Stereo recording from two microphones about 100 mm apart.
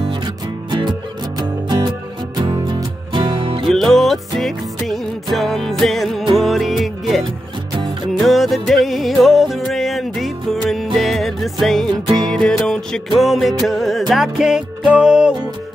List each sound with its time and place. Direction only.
0.7 s music: 50° right (ahead or behind)
3.6 s music: centre (ahead or behind)